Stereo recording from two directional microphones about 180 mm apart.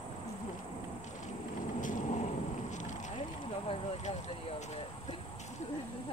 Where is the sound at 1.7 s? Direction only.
45° left (ahead or behind).